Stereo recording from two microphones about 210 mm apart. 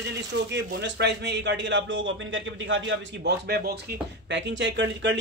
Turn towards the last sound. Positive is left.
turn(degrees=-60)  # may be behind; listen again after turning